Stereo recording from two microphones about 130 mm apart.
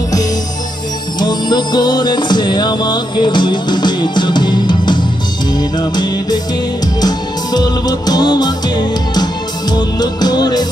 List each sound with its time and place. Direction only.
1.2 s music: 35° left (ahead or behind)